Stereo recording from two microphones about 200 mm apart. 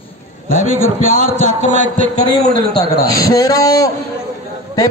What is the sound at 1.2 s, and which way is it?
Speech, 35° right (ahead or behind).